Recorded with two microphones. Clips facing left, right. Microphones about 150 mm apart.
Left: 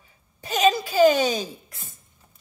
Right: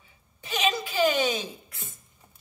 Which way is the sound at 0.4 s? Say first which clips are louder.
Left 7 dB; 40° left (ahead or behind).